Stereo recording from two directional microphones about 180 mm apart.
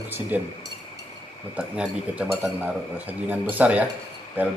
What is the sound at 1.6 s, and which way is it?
A man's voice, 5° right (ahead or behind).